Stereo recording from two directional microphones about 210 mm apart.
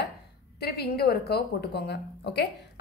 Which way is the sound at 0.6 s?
50° left (ahead or behind).